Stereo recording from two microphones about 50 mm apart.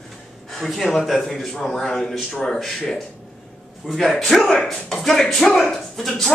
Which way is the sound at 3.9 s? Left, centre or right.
Centre.